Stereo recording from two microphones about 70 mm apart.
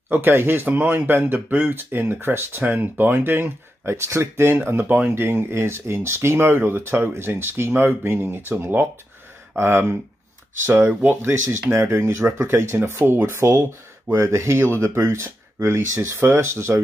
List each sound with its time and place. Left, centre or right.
0.1 s speech: right
5.1 s speech: right